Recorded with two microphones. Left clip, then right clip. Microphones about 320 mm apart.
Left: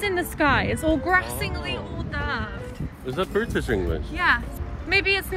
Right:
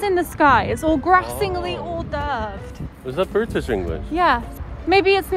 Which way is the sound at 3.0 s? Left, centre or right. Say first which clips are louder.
Right 4 dB; right.